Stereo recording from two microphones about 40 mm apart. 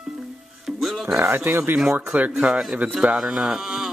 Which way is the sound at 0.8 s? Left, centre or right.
Centre.